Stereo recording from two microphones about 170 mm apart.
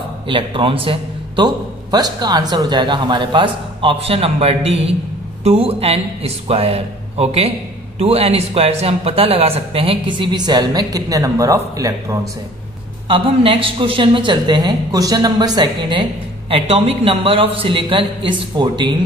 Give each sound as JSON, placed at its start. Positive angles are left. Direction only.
{"t": 0.3, "sound": "a woman's voice", "side_deg": -30}
{"t": 13.1, "sound": "a woman's voice", "side_deg": -30}